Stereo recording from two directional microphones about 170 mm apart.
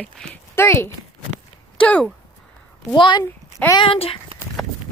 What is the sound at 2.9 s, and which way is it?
Speech, 25° left (ahead or behind).